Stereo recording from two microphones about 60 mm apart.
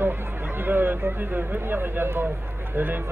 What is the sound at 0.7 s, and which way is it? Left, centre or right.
Speech, right.